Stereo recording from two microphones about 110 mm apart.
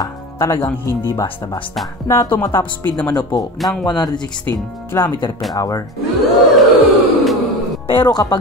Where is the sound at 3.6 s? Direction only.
Centre (ahead or behind).